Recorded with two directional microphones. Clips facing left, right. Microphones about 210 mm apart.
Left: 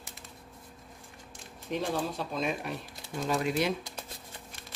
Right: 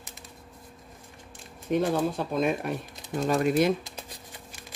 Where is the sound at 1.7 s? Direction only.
50° right (ahead or behind).